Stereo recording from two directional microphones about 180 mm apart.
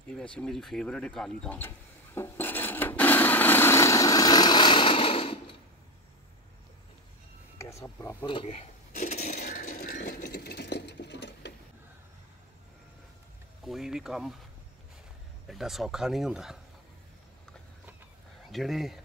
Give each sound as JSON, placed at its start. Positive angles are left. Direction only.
{"t": 0.4, "sound": "speech", "side_deg": 0}
{"t": 2.1, "sound": "rub", "side_deg": 10}
{"t": 7.8, "sound": "speech", "side_deg": 15}
{"t": 8.3, "sound": "a sound", "side_deg": 35}
{"t": 13.7, "sound": "a sound", "side_deg": 0}
{"t": 15.4, "sound": "speech", "side_deg": 0}
{"t": 18.5, "sound": "speech", "side_deg": 0}